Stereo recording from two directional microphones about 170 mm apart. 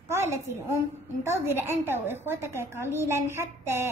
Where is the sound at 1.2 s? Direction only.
15° right (ahead or behind).